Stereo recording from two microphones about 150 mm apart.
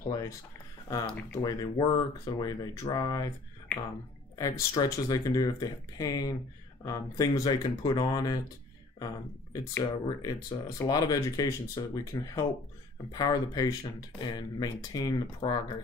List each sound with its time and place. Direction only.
0.0 s a sound: 25° left (ahead or behind)
1.0 s speech: 10° left (ahead or behind)
1.4 s speech: 25° left (ahead or behind)
4.4 s speech: 20° left (ahead or behind)